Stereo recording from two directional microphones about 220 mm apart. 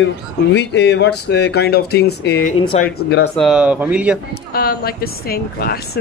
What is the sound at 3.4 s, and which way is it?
Speech, 5° right (ahead or behind).